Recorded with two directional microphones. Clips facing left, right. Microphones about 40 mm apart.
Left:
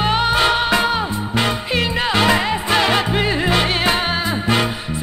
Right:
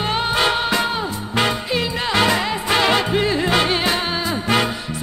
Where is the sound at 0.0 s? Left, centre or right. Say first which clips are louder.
Left 3 dB; left.